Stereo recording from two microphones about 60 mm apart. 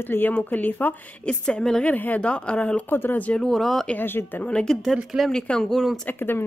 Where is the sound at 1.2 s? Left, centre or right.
Centre.